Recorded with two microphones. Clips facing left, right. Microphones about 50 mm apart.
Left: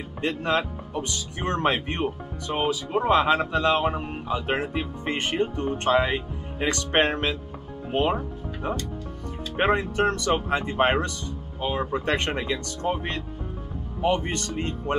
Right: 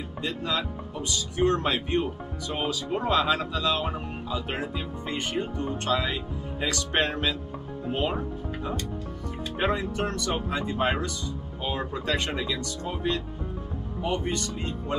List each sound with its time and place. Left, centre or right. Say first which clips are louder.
0.2 s speech: left 5 dB; left
5.7 s speech: left 6 dB; left
9.6 s speech: left 5 dB; left